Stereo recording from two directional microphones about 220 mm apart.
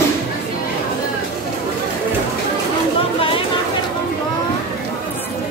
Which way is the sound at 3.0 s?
25° left (ahead or behind).